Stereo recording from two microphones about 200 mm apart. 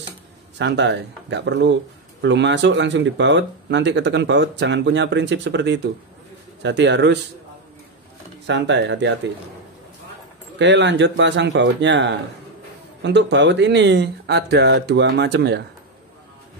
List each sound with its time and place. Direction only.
0.6 s speech: 60° right (ahead or behind)
8.5 s speech: 60° right (ahead or behind)
10.6 s speech: 65° right (ahead or behind)